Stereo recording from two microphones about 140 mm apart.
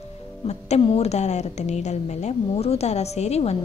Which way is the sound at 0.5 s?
50° left (ahead or behind).